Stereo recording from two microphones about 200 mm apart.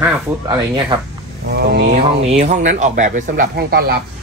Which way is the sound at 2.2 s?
35° right (ahead or behind).